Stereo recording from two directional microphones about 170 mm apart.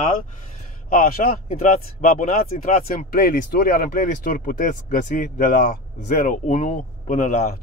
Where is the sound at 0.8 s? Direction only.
55° left (ahead or behind).